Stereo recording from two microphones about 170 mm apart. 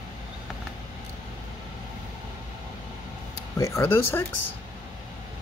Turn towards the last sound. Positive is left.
turn(degrees=15)  # may be behind; listen again after turning